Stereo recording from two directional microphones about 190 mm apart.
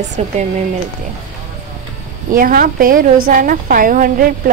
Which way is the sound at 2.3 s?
50° right (ahead or behind).